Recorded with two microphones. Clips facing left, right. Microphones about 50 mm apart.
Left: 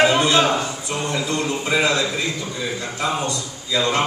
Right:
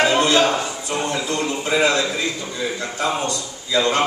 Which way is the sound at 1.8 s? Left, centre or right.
Right.